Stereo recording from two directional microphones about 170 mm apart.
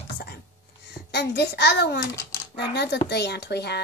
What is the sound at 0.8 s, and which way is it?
A child's voice, 75° left (ahead or behind).